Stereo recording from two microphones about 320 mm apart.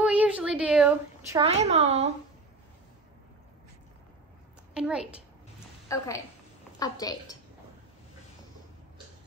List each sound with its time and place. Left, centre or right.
0.0 s a woman's voice: centre
1.4 s a woman's voice: centre
4.7 s a child's voice: centre
5.9 s a woman's voice: centre